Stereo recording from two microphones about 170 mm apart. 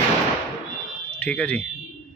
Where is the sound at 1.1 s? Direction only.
5° left (ahead or behind).